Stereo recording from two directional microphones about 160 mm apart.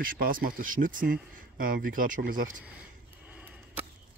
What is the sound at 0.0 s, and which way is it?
Speech, 65° right (ahead or behind).